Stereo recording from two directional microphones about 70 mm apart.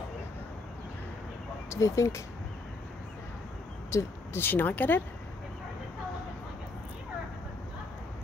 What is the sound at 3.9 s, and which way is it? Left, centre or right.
Speech, left.